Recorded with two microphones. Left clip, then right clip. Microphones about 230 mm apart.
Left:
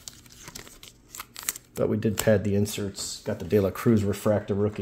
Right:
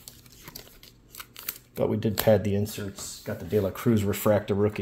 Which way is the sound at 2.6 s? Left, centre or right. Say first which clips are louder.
Left 4 dB; left.